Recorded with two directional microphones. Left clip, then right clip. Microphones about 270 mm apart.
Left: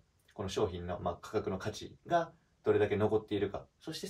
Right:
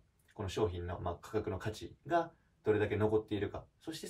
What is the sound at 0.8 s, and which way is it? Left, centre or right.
Speech, centre.